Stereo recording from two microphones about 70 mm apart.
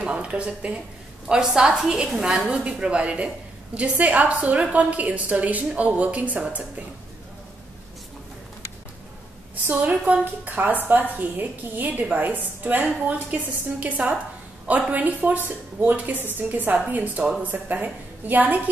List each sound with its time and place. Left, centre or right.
0.0 s speech: centre
1.2 s a woman's voice: centre
2.4 s a woman's voice: centre
9.7 s a woman's voice: right